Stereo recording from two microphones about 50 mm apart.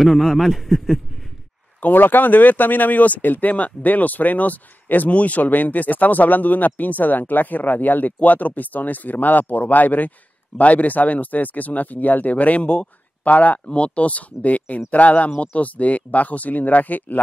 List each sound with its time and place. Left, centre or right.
0.0 s a man's voice: centre
1.8 s speech: left